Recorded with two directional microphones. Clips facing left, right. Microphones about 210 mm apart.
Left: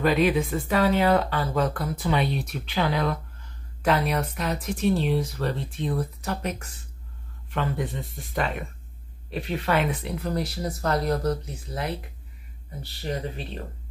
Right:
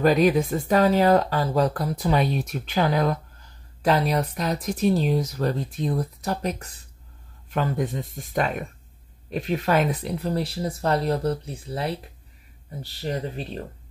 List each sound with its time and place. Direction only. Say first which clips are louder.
0.0 s speech: right 3 dB; 40° right (ahead or behind)